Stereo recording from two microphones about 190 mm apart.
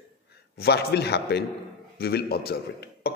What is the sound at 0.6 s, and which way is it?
A man's voice, 60° left (ahead or behind).